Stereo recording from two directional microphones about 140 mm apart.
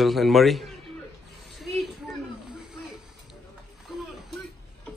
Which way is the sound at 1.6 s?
Centre (ahead or behind).